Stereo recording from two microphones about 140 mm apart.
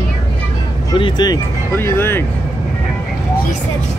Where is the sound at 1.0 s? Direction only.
30° left (ahead or behind).